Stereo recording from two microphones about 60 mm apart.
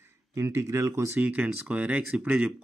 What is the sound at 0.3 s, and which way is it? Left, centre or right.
Speech, right.